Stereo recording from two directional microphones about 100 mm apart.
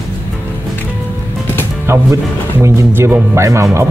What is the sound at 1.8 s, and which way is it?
Speech, 25° right (ahead or behind).